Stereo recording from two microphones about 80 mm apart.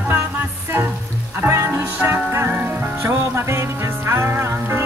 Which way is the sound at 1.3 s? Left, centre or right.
Right.